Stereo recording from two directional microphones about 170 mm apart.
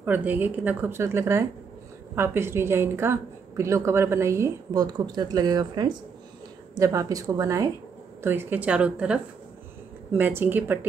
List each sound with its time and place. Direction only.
0.0 s a woman's voice: 10° right (ahead or behind)